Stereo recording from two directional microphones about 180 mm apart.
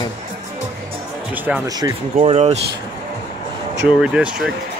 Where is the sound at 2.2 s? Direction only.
35° right (ahead or behind).